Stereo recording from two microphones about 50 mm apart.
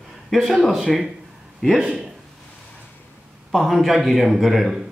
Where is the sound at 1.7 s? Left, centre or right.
Centre.